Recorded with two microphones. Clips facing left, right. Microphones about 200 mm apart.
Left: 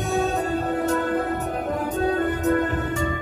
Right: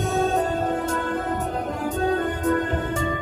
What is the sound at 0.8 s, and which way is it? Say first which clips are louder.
Music: left 3 dB; 45° left (ahead or behind).